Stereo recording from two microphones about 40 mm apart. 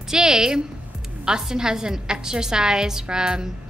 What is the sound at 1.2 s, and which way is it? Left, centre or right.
A woman's voice, centre.